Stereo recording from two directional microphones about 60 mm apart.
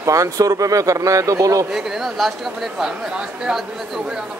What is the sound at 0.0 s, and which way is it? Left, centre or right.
Speech, right.